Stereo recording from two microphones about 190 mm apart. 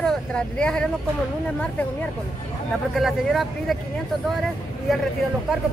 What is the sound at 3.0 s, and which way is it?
Speech, centre (ahead or behind).